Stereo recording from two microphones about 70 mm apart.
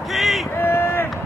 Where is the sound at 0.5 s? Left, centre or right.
Left.